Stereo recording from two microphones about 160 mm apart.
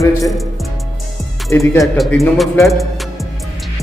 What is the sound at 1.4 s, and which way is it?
Speech, 20° left (ahead or behind).